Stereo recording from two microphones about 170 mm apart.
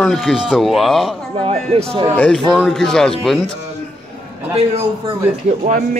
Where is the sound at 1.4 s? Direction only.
35° right (ahead or behind).